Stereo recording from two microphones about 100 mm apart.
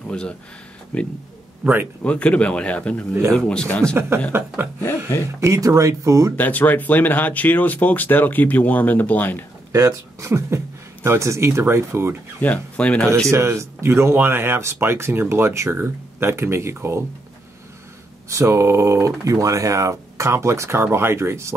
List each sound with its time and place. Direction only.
0.1 s speech: 10° left (ahead or behind)
1.6 s speech: 20° right (ahead or behind)
2.0 s speech: 10° left (ahead or behind)
4.6 s speech: 20° right (ahead or behind)
6.3 s speech: 15° left (ahead or behind)
9.7 s speech: 30° right (ahead or behind)
12.4 s speech: 15° left (ahead or behind)
13.3 s speech: 30° right (ahead or behind)
18.3 s speech: 30° right (ahead or behind)